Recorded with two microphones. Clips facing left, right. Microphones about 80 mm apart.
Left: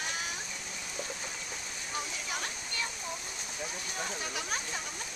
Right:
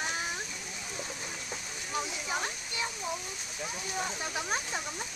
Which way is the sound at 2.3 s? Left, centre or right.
Right.